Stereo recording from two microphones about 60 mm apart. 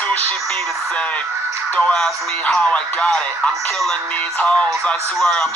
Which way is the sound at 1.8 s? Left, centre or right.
Centre.